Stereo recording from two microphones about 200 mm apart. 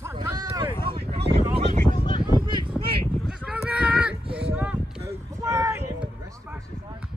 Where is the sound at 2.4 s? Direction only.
20° right (ahead or behind).